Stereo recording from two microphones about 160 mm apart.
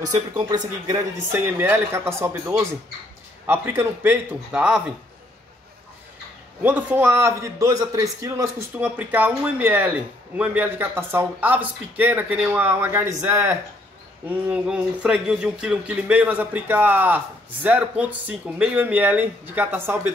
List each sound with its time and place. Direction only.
0.1 s speech: 25° right (ahead or behind)
1.3 s a man's voice: 15° right (ahead or behind)
6.6 s a man's voice: 10° right (ahead or behind)